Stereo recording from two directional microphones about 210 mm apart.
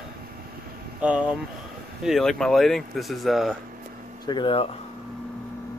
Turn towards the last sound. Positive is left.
turn(degrees=25)  # may be behind; listen again after turning